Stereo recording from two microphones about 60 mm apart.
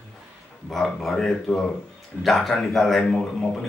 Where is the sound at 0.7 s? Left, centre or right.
Centre.